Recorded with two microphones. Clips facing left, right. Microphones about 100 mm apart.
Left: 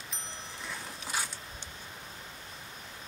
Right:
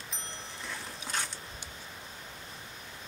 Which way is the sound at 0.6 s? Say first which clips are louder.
Even; 5° left (ahead or behind).